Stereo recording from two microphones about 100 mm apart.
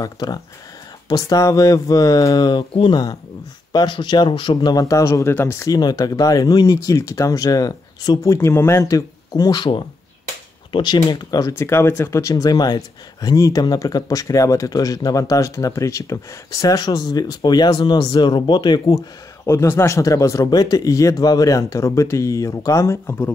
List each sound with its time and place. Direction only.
0.0 s speech: 35° left (ahead or behind)
5.8 s speech: 40° left (ahead or behind)
11.5 s speech: 25° left (ahead or behind); by 19.0 s 45° left (ahead or behind)
19.4 s speech: 30° left (ahead or behind)